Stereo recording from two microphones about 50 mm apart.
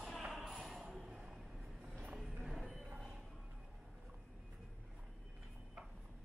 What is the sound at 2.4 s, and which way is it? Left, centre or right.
Music, centre.